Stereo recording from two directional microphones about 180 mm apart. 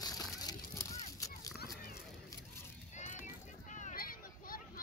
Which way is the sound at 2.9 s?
45° left (ahead or behind).